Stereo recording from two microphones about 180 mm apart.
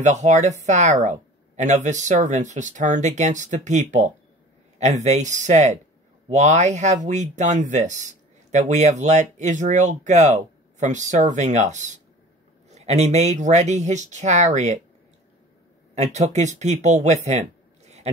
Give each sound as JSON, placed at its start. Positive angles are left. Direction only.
{"t": 0.0, "sound": "speech", "side_deg": -40}
{"t": 15.9, "sound": "speech", "side_deg": -40}